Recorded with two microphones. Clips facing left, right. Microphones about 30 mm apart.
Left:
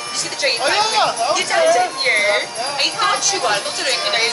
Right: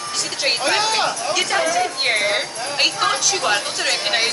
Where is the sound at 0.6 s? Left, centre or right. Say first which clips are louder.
Left 3 dB; centre.